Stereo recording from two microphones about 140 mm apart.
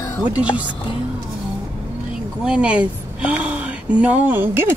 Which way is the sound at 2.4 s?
10° right (ahead or behind).